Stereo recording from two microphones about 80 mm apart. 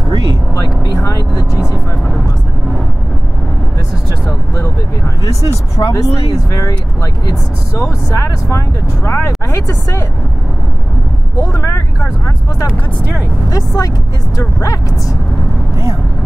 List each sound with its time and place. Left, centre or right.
0.1 s vehicle: right
0.6 s vehicle: left
5.5 s speech: left
11.3 s speech: left
13.5 s speech: left